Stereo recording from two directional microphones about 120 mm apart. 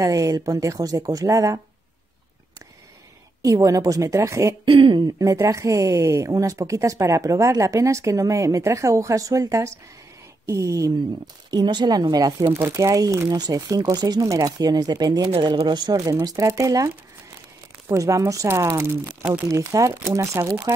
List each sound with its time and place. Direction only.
0.0 s speech: 30° right (ahead or behind)
3.4 s speech: 30° right (ahead or behind)
4.6 s speech: 45° right (ahead or behind)
5.0 s speech: 30° right (ahead or behind)
11.5 s speech: 35° right (ahead or behind)
12.4 s speech: 20° right (ahead or behind); by 15.3 s 35° right (ahead or behind)
15.3 s speech: 45° right (ahead or behind); by 20.7 s 25° right (ahead or behind)